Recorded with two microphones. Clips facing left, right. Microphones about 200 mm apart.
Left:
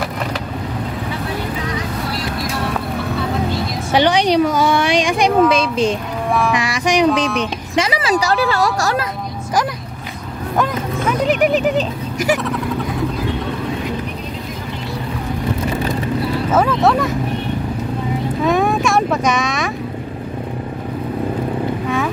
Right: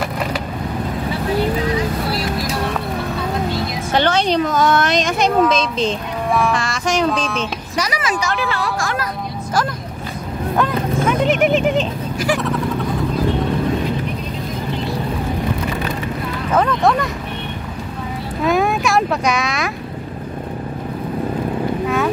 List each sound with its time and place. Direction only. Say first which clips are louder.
3.9 s a sound: left 3 dB; 15° left (ahead or behind)
5.3 s speech: left 2 dB; 5° left (ahead or behind); by 9.0 s 40° left (ahead or behind)
12.3 s speech: left 1 dB; centre (ahead or behind)
16.5 s speech: left 1 dB; 5° left (ahead or behind)
18.4 s speech: even; centre (ahead or behind)
21.8 s vehicle: right 3 dB; centre (ahead or behind)